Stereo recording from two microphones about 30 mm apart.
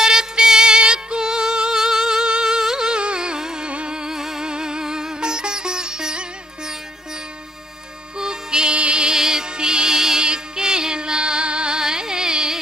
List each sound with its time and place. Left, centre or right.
0.0 s music: right
3.0 s music: right
3.6 s music: right
4.2 s music: centre
4.5 s sitar: right
8.2 s music: right
9.1 s music: centre
11.8 s carnatic music: right